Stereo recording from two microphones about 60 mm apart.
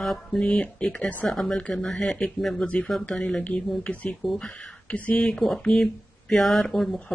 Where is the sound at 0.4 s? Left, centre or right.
Centre.